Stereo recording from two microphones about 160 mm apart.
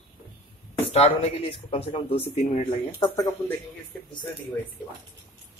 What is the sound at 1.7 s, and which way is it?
Speech, 40° left (ahead or behind).